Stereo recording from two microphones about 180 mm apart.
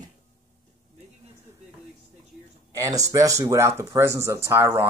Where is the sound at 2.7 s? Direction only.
20° right (ahead or behind).